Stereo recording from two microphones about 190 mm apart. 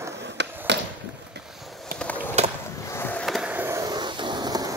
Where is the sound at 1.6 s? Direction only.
Centre (ahead or behind).